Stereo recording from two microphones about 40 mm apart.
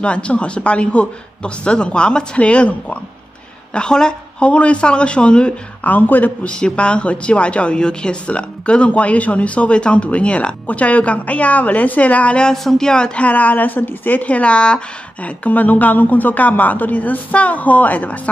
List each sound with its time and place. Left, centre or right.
0.0 s speech: left
3.7 s a woman's voice: left
4.5 s speech: left
5.9 s speech: left
6.5 s a woman's voice: left
12.6 s speech: centre
13.2 s a woman's voice: left
15.2 s speech: left